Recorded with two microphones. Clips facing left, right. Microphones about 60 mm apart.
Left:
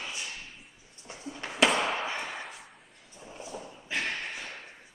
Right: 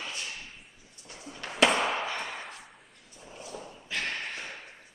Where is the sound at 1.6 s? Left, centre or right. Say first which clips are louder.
Right 1 dB; centre.